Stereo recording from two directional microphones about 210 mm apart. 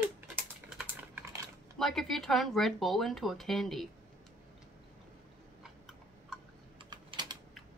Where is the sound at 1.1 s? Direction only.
15° right (ahead or behind).